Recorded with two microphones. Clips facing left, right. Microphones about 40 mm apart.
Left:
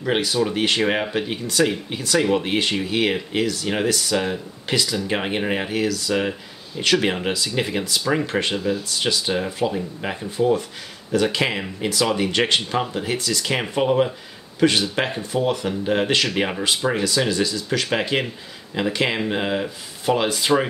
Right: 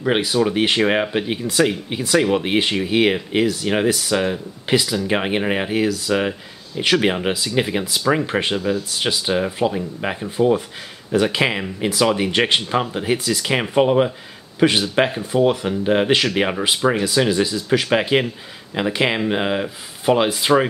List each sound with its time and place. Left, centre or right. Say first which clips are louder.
0.0 s speech: right 3 dB; centre
8.5 s speech: right 2 dB; centre
8.9 s speech: right 2 dB; centre
15.0 s speech: right 4 dB; centre
15.4 s speech: right 5 dB; centre